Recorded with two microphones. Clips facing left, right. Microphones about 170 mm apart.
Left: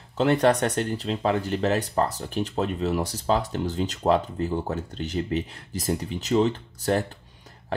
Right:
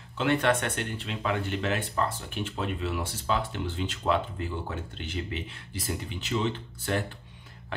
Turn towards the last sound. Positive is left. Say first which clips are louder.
# left 6 dB
turn(degrees=40)  # may be behind; listen again after turning